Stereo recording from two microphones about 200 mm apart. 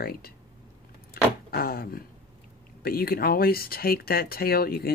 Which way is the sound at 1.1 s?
50° left (ahead or behind).